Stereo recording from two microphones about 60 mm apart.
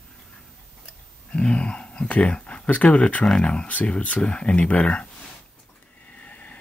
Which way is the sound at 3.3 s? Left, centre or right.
Centre.